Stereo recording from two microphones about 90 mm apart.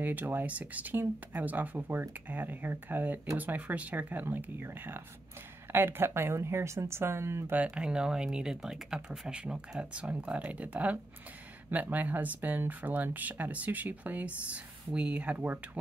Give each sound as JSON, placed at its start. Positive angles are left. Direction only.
{"t": 0.0, "sound": "speech", "side_deg": -20}
{"t": 7.5, "sound": "speech", "side_deg": -10}